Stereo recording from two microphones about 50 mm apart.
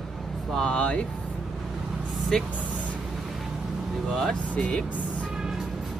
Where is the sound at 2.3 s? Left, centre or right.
Centre.